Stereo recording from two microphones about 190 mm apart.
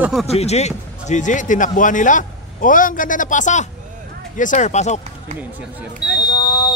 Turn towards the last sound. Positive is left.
turn(degrees=20)  # may be behind; listen again after turning